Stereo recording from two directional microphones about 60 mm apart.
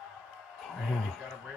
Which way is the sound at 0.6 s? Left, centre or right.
Centre.